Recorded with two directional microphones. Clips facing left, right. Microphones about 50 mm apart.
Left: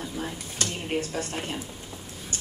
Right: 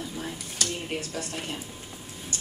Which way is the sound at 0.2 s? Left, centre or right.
Left.